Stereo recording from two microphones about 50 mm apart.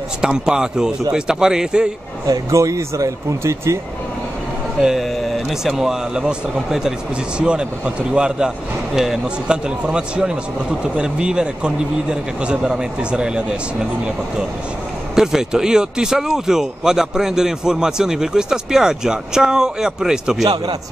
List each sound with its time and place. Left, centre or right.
0.5 s speech: centre
2.5 s speech: right
5.1 s a sound: centre
5.8 s speech: centre
15.1 s speech: centre